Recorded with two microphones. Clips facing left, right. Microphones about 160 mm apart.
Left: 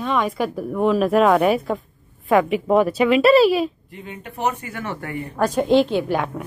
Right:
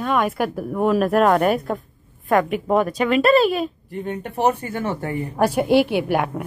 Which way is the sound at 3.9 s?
40° right (ahead or behind).